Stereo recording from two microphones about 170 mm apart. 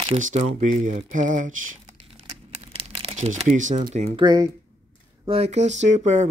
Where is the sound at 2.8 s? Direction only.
30° right (ahead or behind).